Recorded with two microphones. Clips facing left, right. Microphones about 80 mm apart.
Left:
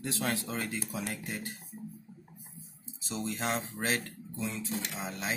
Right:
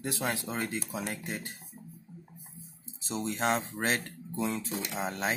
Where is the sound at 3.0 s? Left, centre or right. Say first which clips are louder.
Right 2 dB; right.